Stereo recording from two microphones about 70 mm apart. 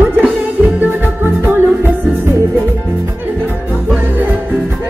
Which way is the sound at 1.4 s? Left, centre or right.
Right.